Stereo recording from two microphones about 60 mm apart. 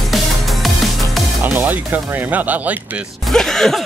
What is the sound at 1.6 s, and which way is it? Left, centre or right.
Speech, right.